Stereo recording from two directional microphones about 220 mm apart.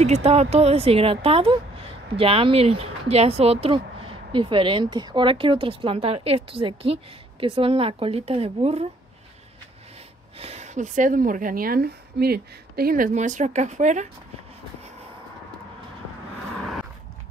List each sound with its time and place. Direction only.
0.0 s a woman's voice: 30° right (ahead or behind)
10.4 s a woman's voice: 30° right (ahead or behind)